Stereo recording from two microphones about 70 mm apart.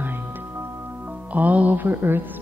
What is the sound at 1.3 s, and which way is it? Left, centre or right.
Speech, right.